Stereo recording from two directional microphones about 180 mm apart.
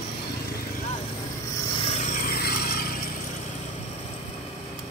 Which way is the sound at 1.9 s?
45° left (ahead or behind).